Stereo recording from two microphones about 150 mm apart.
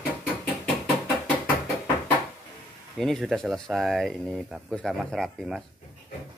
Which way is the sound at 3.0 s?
Centre (ahead or behind).